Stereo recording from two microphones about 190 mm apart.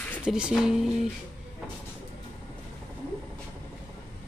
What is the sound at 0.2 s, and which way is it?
Speech, 5° right (ahead or behind).